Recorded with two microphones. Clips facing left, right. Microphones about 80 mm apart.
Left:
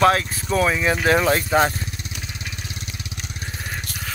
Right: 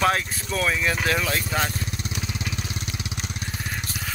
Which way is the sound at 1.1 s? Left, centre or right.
Left.